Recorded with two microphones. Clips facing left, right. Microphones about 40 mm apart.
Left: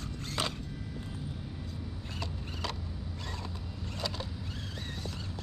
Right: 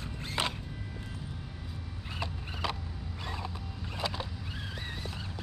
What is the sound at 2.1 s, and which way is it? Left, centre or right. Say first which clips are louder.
Creak: right 3 dB; centre.